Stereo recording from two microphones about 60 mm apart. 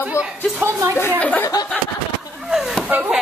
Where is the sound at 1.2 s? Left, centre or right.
Left.